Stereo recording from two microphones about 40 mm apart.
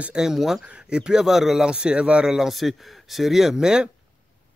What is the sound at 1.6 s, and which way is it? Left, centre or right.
Speech, right.